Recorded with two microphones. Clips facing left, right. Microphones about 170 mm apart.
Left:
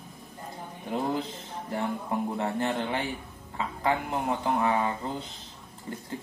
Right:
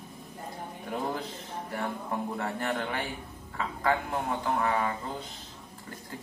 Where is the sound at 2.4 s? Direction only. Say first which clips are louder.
Left 3 dB; 25° left (ahead or behind).